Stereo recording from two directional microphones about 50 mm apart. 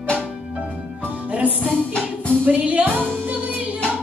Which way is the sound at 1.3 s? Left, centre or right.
Right.